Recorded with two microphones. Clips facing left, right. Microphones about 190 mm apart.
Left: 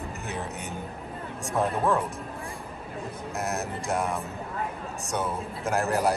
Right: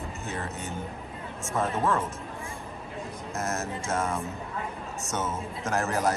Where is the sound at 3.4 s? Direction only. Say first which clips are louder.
Left 1 dB; 15° left (ahead or behind).